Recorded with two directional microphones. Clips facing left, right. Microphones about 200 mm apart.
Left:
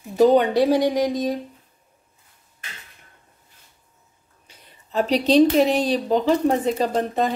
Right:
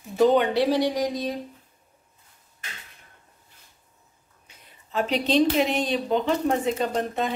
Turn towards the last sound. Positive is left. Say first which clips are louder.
# left 4 dB
turn(degrees=40)  # may be behind; listen again after turning